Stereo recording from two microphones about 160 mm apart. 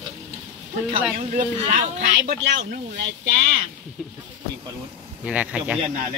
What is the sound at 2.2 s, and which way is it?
Speech, 80° right.